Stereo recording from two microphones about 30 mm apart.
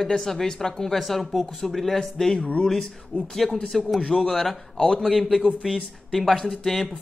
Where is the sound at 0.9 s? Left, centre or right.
Centre.